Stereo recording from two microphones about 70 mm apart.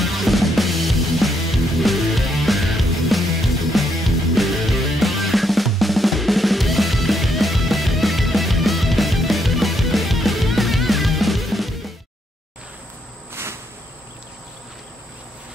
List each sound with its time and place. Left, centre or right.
0.0 s music: centre
13.3 s cricket: right